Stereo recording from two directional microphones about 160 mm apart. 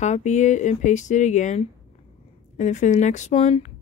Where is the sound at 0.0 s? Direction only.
45° left (ahead or behind).